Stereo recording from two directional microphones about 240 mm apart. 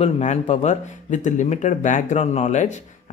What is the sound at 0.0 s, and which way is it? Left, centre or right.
Speech, left.